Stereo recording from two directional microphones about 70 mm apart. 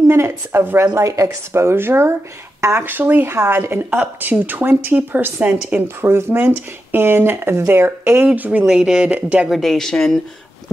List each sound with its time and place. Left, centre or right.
0.1 s speech: right
0.9 s speech: right; by 5.9 s centre
5.9 s speech: right
8.3 s speech: right
8.6 s speech: centre
9.5 s speech: centre